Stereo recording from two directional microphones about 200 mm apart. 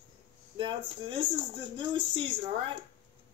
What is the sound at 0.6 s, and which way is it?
Speech, 25° right (ahead or behind).